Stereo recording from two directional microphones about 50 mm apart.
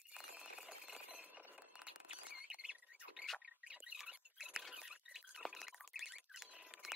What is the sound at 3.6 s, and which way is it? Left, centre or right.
Frog, right.